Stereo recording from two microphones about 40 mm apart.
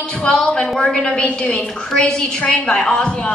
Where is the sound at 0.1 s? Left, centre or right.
Left.